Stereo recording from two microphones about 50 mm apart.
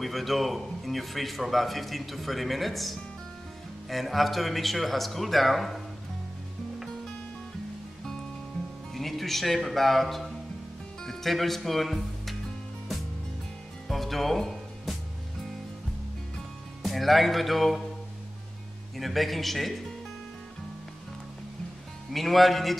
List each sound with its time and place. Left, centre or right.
0.0 s a man's voice: centre
8.9 s a man's voice: centre
13.8 s music: centre
16.8 s a man's voice: centre
18.9 s a man's voice: centre
22.1 s a man's voice: centre